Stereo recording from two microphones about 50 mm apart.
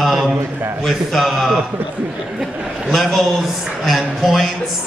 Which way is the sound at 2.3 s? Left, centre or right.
Centre.